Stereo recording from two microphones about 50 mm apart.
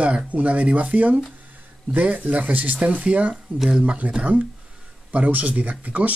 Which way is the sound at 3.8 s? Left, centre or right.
Right.